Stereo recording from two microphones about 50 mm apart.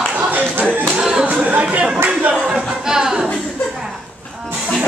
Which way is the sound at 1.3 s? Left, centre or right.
Right.